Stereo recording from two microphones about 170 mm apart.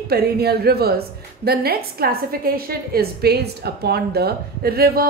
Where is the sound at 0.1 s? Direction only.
70° right (ahead or behind).